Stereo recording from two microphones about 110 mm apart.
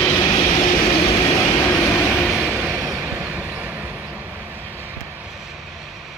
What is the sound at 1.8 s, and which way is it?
Vehicle, 20° left (ahead or behind).